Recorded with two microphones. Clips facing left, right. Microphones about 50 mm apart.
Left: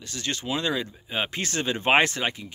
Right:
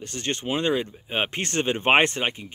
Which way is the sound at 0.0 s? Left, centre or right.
Right.